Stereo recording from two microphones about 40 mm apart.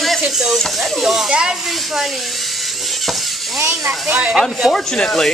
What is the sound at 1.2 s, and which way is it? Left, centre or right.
Speech, right.